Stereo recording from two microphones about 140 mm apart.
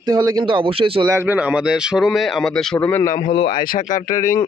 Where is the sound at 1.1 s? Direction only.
15° right (ahead or behind); by 2.6 s centre (ahead or behind).